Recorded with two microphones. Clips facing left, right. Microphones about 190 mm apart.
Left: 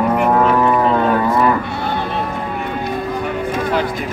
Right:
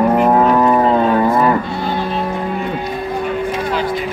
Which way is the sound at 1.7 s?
60° left (ahead or behind).